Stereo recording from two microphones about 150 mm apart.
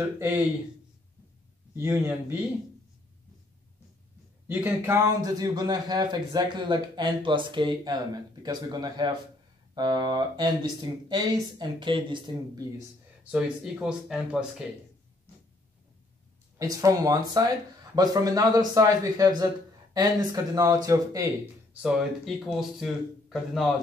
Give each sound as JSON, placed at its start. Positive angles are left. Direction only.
{"t": 1.8, "sound": "speech", "side_deg": -20}
{"t": 4.5, "sound": "a man's voice", "side_deg": -10}
{"t": 13.3, "sound": "speech", "side_deg": -5}
{"t": 16.5, "sound": "a man's voice", "side_deg": -25}
{"t": 21.8, "sound": "speech", "side_deg": -5}